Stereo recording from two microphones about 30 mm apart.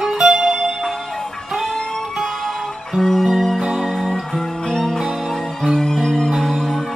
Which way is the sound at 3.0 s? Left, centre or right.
Centre.